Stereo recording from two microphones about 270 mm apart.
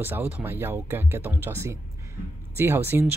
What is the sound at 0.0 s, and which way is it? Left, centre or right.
Speech, centre.